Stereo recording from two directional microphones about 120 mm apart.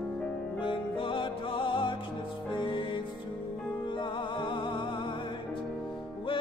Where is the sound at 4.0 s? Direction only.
40° left (ahead or behind).